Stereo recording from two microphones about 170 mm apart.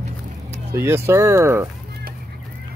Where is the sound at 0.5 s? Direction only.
15° right (ahead or behind).